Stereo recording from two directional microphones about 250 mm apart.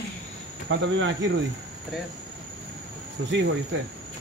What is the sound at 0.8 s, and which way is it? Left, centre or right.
Speech, right.